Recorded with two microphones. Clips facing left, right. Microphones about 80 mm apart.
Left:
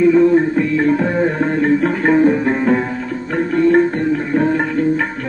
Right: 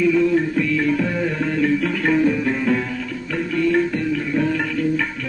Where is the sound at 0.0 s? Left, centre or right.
Left.